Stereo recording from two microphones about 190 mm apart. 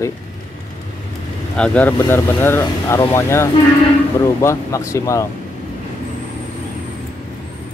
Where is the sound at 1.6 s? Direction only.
5° left (ahead or behind).